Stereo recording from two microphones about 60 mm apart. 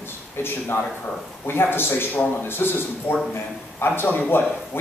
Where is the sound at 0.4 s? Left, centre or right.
Left.